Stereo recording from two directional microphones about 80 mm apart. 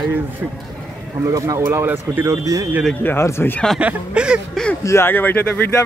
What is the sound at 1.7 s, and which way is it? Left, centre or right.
Speech, right.